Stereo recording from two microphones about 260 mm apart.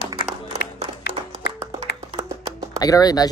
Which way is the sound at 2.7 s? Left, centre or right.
Centre.